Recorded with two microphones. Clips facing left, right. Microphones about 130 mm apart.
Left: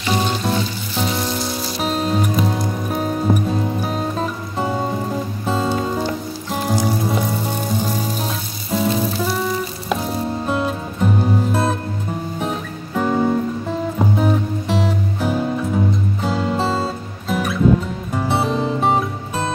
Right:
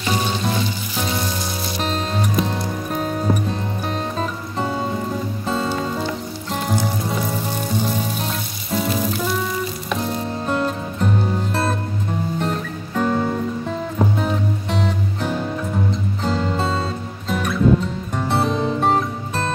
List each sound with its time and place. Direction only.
0.1 s music: 5° left (ahead or behind)